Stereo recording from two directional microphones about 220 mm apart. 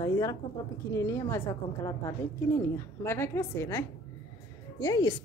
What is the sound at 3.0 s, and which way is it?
Speech, 10° left (ahead or behind).